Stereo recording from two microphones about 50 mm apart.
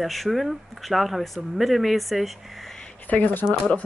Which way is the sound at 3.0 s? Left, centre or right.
Left.